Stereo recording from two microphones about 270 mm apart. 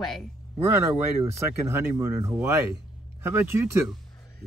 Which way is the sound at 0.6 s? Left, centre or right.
Centre.